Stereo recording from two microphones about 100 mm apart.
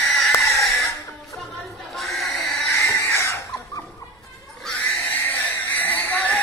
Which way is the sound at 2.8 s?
30° left (ahead or behind).